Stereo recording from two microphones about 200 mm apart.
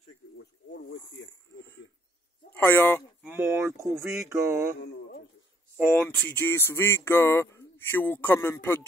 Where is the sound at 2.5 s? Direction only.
10° left (ahead or behind).